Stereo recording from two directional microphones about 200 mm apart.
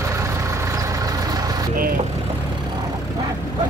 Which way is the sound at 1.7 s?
45° right (ahead or behind).